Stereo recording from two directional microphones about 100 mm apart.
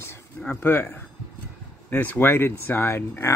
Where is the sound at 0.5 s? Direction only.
20° left (ahead or behind).